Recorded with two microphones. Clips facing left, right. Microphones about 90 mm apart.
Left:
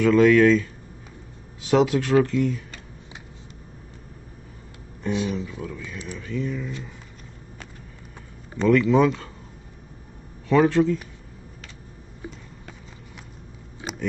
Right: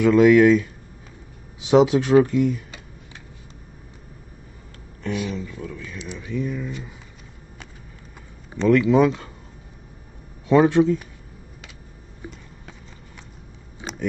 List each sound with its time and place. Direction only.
0.0 s speech: 5° right (ahead or behind)
1.6 s speech: 20° right (ahead or behind)
2.2 s speech: 10° right (ahead or behind)
5.0 s speech: 25° left (ahead or behind)
5.3 s speech: 10° left (ahead or behind)
5.9 s speech: 5° right (ahead or behind)
8.5 s speech: centre (ahead or behind)
10.5 s speech: 20° right (ahead or behind)